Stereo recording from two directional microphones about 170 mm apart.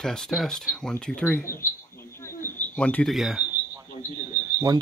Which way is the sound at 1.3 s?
10° left (ahead or behind).